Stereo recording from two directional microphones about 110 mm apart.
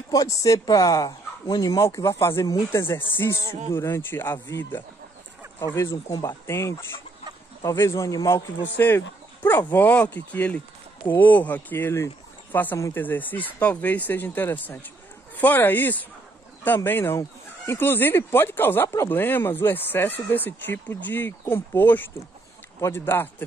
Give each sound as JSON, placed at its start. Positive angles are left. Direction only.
{"t": 0.1, "sound": "speech", "side_deg": 35}
{"t": 6.0, "sound": "speech", "side_deg": 30}
{"t": 8.6, "sound": "speech", "side_deg": 15}
{"t": 13.0, "sound": "speech", "side_deg": 15}